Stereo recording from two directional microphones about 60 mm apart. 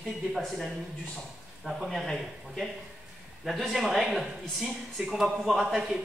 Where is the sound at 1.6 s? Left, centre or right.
Centre.